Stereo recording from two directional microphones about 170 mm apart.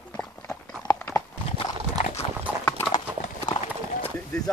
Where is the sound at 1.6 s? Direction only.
35° left (ahead or behind).